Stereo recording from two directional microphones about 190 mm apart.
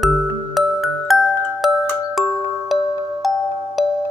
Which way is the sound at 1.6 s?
Centre (ahead or behind).